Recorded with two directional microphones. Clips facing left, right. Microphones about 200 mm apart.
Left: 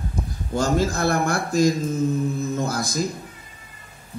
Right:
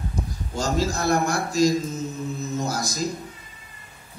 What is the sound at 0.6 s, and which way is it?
A man's voice, 55° left (ahead or behind).